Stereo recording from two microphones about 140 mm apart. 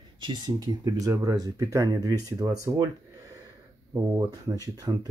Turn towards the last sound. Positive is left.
turn(degrees=-25)  # may be behind; listen again after turning